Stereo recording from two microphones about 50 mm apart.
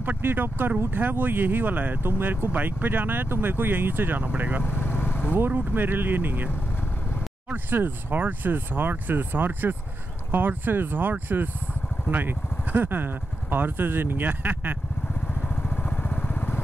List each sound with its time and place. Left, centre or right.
0.0 s speech: right
4.2 s speech: right
4.6 s vehicle: left
5.5 s speech: right
7.5 s speech: right
15.5 s vehicle: left